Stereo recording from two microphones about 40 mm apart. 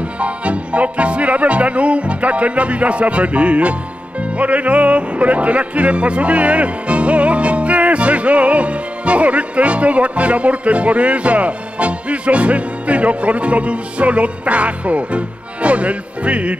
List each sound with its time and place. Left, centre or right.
0.2 s music: right